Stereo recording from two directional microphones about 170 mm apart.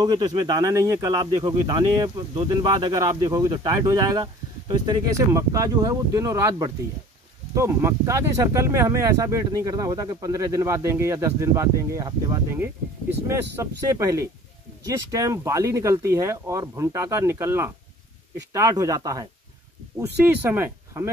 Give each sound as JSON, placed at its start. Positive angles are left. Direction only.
{"t": 0.0, "sound": "speech", "side_deg": -25}